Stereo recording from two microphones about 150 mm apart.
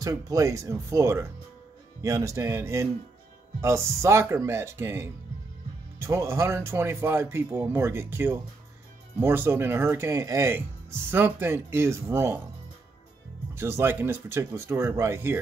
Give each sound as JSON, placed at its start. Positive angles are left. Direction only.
{"t": 0.0, "sound": "speech", "side_deg": -25}
{"t": 13.6, "sound": "speech", "side_deg": -15}